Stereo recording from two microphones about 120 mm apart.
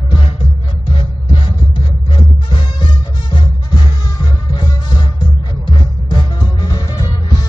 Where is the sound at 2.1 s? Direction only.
40° left (ahead or behind).